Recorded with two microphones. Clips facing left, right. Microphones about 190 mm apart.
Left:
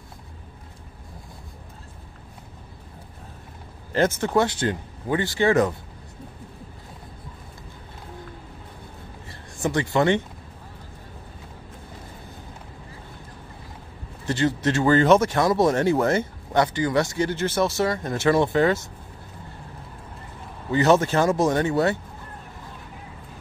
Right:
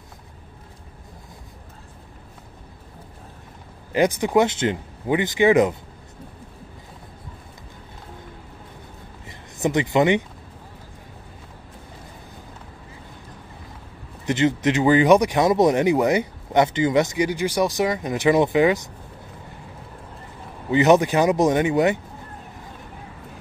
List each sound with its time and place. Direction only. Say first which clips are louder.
3.9 s speech: right 2 dB; 15° right (ahead or behind)
9.3 s speech: right 3 dB; 20° right (ahead or behind)
14.2 s speech: right 3 dB; 20° right (ahead or behind)
20.7 s speech: right 3 dB; 15° right (ahead or behind)